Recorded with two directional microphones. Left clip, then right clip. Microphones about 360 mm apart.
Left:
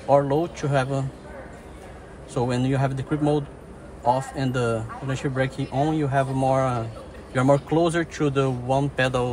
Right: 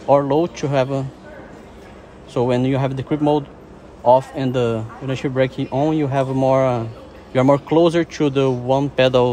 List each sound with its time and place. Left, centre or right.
0.1 s speech: right
2.3 s speech: centre